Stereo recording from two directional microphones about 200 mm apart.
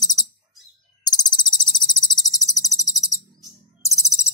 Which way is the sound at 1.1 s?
20° left (ahead or behind).